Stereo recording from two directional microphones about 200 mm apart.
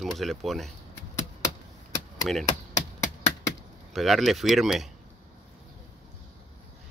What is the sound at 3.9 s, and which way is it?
Speech, centre (ahead or behind).